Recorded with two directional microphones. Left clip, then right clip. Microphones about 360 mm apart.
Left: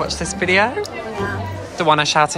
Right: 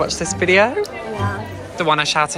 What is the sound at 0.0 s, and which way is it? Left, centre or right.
Speech, centre.